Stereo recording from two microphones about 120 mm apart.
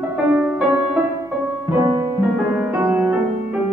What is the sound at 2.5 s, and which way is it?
Music, 15° right (ahead or behind).